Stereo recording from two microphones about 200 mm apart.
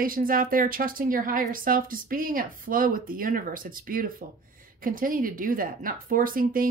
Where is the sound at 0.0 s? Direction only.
45° right (ahead or behind).